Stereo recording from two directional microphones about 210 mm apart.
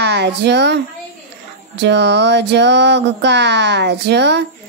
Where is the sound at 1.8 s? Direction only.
55° right (ahead or behind).